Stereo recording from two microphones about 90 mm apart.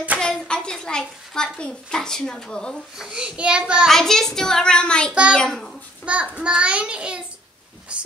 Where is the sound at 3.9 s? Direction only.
5° left (ahead or behind).